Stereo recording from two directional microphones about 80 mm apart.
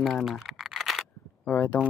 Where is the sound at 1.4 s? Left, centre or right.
Centre.